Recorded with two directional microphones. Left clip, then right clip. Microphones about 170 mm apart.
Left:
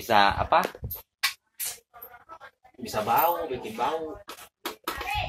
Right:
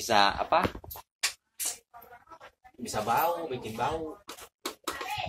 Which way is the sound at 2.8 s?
Centre (ahead or behind).